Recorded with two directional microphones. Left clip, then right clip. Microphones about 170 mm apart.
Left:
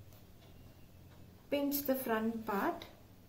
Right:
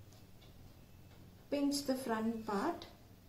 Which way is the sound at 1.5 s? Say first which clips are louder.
Left 2 dB; 5° left (ahead or behind).